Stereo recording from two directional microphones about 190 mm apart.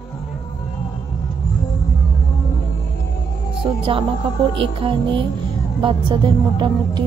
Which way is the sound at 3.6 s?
30° right (ahead or behind).